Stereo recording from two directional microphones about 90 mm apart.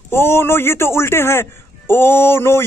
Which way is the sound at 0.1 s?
25° left (ahead or behind).